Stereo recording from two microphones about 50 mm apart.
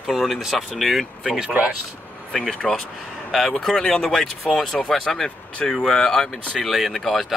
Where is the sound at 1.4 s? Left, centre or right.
Right.